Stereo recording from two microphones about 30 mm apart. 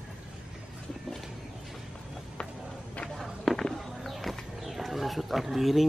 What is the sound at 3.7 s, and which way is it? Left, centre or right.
Roaring cats, centre.